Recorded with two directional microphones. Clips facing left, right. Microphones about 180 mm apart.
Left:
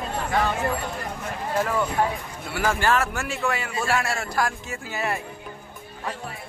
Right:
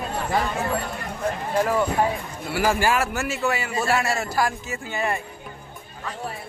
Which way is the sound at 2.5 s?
10° right (ahead or behind).